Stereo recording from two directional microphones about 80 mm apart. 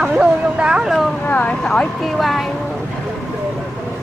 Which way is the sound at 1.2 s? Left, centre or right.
Centre.